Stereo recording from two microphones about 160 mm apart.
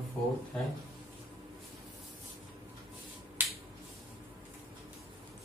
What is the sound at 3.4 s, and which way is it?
Finger snapping, 10° right (ahead or behind).